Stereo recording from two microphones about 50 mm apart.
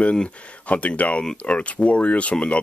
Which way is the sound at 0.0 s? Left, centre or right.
Left.